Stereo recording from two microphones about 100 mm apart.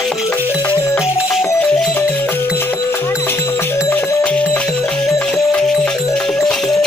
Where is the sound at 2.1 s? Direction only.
20° left (ahead or behind).